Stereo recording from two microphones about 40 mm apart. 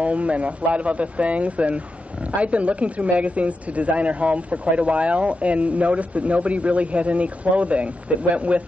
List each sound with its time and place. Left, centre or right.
0.0 s speech: right